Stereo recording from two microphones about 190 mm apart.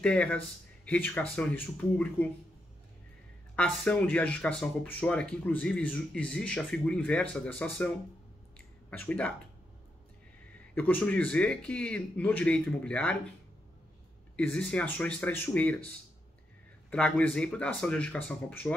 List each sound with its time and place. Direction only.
0.0 s speech: 5° left (ahead or behind)
3.5 s speech: 10° left (ahead or behind)
8.5 s a sound: 10° left (ahead or behind)
10.7 s speech: 10° left (ahead or behind)
14.3 s speech: 5° left (ahead or behind)
16.9 s speech: 5° left (ahead or behind)